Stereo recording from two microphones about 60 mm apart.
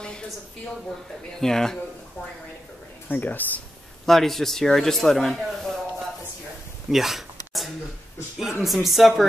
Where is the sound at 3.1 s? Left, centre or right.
Left.